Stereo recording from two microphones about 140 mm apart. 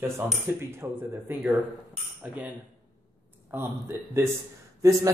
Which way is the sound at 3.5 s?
20° right (ahead or behind).